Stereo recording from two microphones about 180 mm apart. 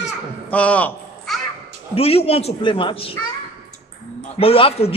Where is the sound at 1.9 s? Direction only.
35° left (ahead or behind).